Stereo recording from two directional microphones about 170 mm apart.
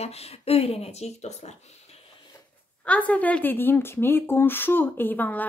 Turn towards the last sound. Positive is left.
turn(degrees=10)  # may be behind; listen again after turning